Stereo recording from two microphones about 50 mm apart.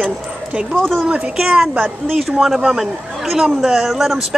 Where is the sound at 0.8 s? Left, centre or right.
Centre.